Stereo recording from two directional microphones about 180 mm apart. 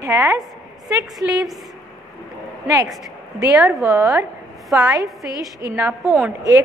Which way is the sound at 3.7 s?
Centre (ahead or behind).